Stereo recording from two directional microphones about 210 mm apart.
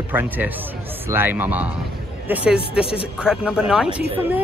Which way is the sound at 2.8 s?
25° left (ahead or behind).